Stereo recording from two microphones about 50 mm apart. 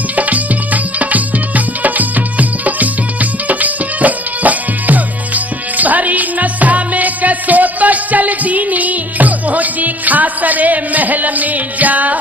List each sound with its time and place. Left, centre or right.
0.1 s music: right